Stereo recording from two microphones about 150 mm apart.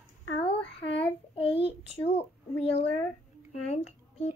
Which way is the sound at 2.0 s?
40° left (ahead or behind).